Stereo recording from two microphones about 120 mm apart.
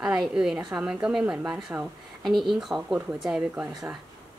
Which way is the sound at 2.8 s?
10° right (ahead or behind).